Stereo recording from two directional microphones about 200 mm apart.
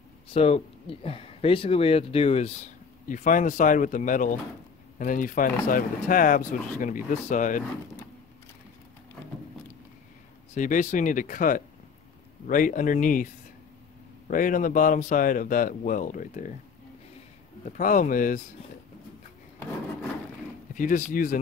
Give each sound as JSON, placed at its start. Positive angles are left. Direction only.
{"t": 0.3, "sound": "speech", "side_deg": 30}
{"t": 10.5, "sound": "speech", "side_deg": 40}
{"t": 17.6, "sound": "speech", "side_deg": 40}
{"t": 20.7, "sound": "speech", "side_deg": 40}